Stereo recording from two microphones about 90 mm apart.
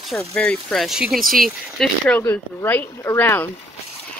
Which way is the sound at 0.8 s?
5° right (ahead or behind).